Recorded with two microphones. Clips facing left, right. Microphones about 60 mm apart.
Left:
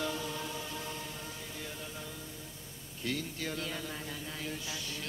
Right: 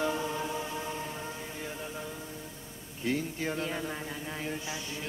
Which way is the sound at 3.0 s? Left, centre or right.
Right.